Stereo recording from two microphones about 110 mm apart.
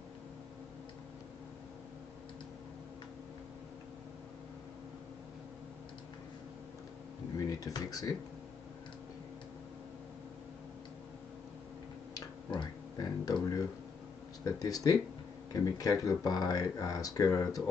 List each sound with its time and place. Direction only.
7.4 s speech: 35° left (ahead or behind)
12.1 s a sound: 40° left (ahead or behind)
14.4 s speech: 30° left (ahead or behind)